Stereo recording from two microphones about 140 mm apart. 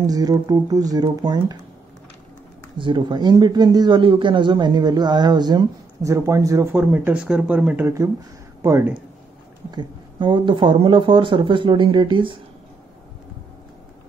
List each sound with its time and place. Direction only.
0.0 s speech: 25° right (ahead or behind)
2.8 s speech: 35° right (ahead or behind)
6.8 s speech: 10° right (ahead or behind)
9.7 s speech: 35° right (ahead or behind)